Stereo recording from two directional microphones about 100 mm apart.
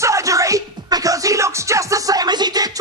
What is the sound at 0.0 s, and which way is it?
Music, 30° right (ahead or behind).